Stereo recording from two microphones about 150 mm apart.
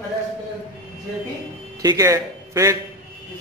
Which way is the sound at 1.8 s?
20° right (ahead or behind).